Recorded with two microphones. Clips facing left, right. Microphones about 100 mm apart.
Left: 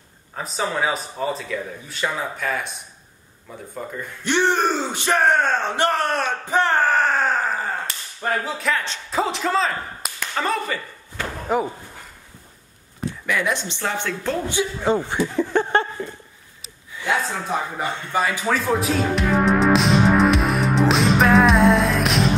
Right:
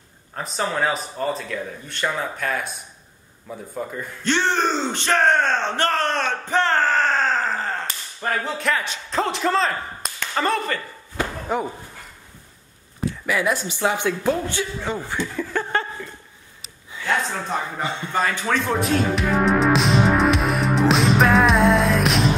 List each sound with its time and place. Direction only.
0.4 s speech: centre (ahead or behind)
4.2 s speech: 15° left (ahead or behind)
13.3 s speech: 5° right (ahead or behind)
14.5 s speech: 15° left (ahead or behind)
14.9 s speech: 25° left (ahead or behind)
15.3 s a sound: 20° left (ahead or behind)
17.0 s speech: 5° left (ahead or behind)
17.8 s speech: 20° right (ahead or behind)
18.1 s music: 10° left (ahead or behind)